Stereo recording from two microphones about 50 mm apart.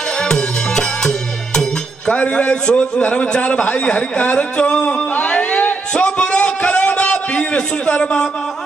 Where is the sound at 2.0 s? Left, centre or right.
Left.